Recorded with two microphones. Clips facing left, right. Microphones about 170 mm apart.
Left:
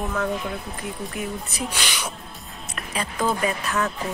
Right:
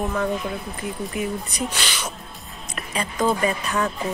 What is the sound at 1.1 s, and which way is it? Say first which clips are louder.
Speech: right 3 dB; centre (ahead or behind).